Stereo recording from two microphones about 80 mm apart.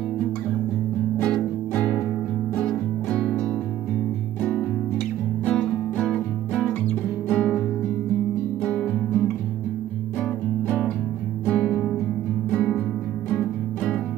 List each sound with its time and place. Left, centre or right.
1.2 s music: centre
7.2 s music: centre
8.6 s music: centre
10.2 s music: centre